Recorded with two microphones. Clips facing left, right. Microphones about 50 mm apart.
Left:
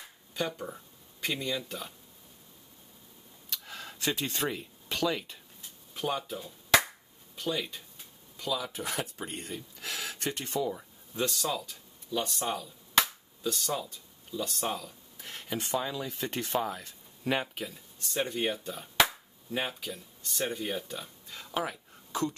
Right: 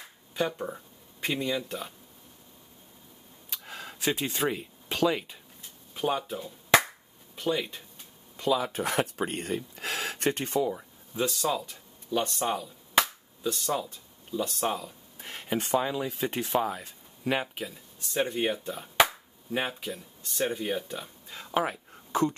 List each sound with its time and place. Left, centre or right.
0.4 s speech: centre
3.4 s a sound: centre
4.2 s speech: centre
8.4 s speech: right
9.8 s a sound: right
10.7 s speech: centre
13.8 s speech: right
14.5 s speech: centre
15.1 s a sound: right
15.7 s speech: right